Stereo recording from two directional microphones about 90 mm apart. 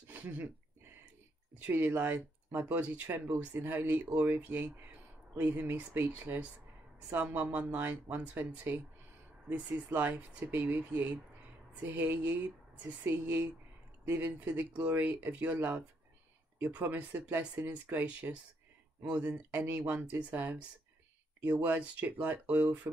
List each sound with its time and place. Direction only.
0.1 s a sound: 20° right (ahead or behind)
1.6 s speech: 20° right (ahead or behind)
9.9 s speech: 20° right (ahead or behind)